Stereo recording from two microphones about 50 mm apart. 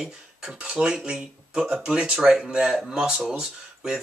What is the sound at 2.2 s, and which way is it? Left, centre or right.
Speech, centre.